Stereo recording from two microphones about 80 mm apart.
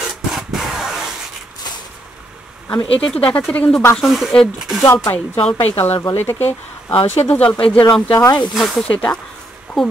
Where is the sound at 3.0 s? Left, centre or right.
Centre.